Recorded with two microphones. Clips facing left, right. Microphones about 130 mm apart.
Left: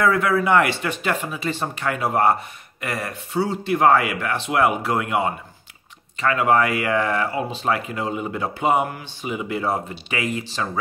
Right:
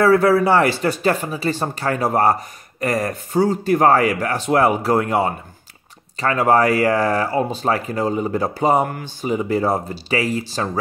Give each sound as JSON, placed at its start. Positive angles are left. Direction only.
{"t": 0.0, "sound": "speech", "side_deg": -35}